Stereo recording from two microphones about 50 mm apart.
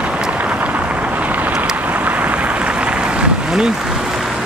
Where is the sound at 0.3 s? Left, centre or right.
Right.